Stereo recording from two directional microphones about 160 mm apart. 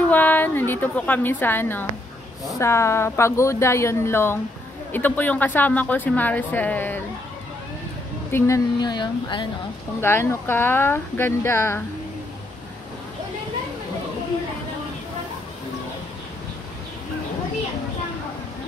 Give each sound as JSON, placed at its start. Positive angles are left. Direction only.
{"t": 0.1, "sound": "speech", "side_deg": 10}
{"t": 8.3, "sound": "a woman's voice", "side_deg": 15}
{"t": 9.9, "sound": "speech", "side_deg": 15}